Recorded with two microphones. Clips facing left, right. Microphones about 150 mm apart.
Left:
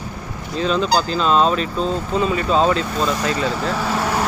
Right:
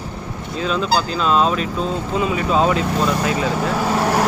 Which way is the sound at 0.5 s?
5° right (ahead or behind).